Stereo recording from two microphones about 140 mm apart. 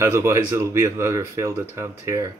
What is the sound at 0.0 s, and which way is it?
Speech, 20° right (ahead or behind).